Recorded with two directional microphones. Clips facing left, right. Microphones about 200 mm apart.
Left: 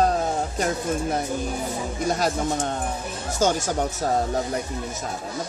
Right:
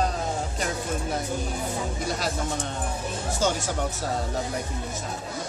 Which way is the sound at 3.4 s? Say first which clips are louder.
Left 5 dB; 45° left (ahead or behind).